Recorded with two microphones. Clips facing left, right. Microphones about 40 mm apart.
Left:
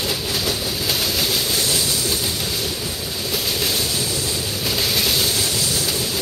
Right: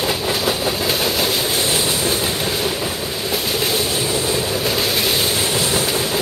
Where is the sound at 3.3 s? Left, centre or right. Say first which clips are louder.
Right 3 dB; centre.